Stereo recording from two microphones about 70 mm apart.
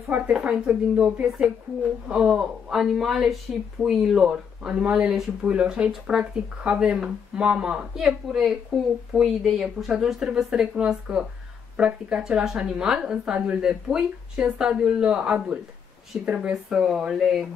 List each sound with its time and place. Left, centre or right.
0.3 s speech: centre
16.6 s speech: centre